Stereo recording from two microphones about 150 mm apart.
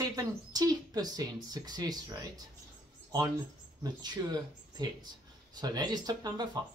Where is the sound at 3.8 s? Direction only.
30° right (ahead or behind).